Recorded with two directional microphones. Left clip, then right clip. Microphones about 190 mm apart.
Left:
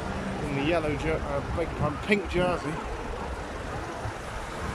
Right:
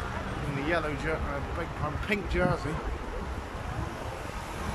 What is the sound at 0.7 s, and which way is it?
Speech, 10° left (ahead or behind).